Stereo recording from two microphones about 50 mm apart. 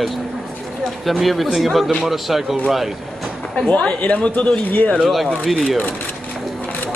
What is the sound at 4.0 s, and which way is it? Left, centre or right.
Speech, left.